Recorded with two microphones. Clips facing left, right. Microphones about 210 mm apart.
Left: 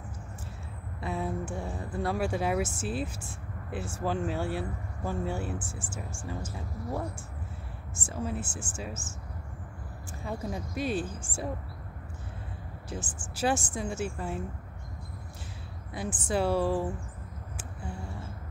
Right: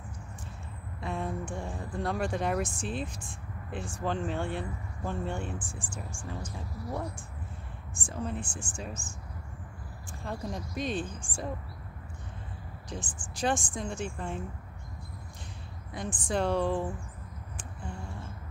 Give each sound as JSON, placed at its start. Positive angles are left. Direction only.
{"t": 1.0, "sound": "speech", "side_deg": 5}
{"t": 8.0, "sound": "speech", "side_deg": 5}
{"t": 10.2, "sound": "speech", "side_deg": 5}
{"t": 12.9, "sound": "speech", "side_deg": 5}
{"t": 16.0, "sound": "speech", "side_deg": 5}